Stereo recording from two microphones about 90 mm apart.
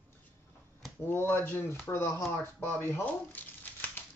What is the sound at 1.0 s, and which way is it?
Speech, 25° left (ahead or behind).